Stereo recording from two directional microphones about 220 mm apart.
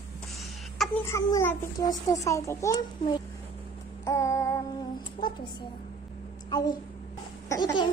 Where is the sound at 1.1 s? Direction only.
10° left (ahead or behind).